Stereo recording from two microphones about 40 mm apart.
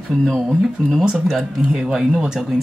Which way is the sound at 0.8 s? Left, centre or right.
Centre.